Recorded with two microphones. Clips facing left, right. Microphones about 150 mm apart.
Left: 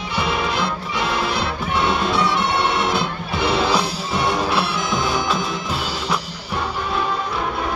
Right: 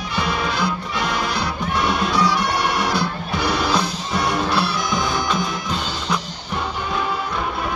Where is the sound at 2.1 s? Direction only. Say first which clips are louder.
Even; 25° left (ahead or behind).